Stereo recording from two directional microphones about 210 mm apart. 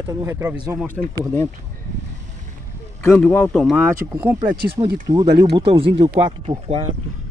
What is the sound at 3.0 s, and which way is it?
Speech, 10° left (ahead or behind).